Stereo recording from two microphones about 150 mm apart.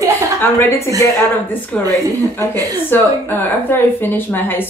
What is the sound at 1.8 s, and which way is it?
Speech, 20° right (ahead or behind).